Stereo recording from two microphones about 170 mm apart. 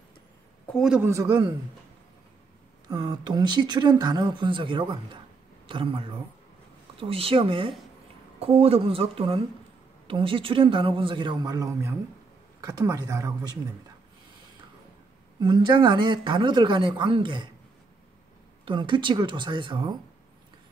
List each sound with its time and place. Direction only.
0.7 s speech: 5° right (ahead or behind)
1.1 s speech: 20° right (ahead or behind)
2.9 s speech: 25° right (ahead or behind)
15.4 s speech: 25° right (ahead or behind)
18.7 s speech: 30° right (ahead or behind)